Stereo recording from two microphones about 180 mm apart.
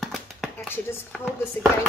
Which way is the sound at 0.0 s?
Centre (ahead or behind).